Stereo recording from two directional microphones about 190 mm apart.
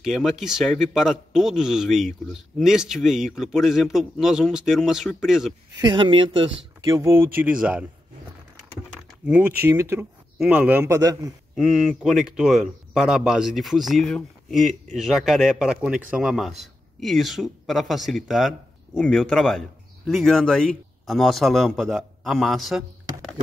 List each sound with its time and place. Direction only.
0.0 s a man's voice: centre (ahead or behind)
5.8 s speech: 25° right (ahead or behind)
9.2 s speech: 10° right (ahead or behind)
11.5 s a man's voice: centre (ahead or behind)